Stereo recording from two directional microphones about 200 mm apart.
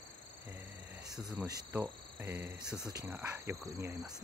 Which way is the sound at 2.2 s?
10° right (ahead or behind).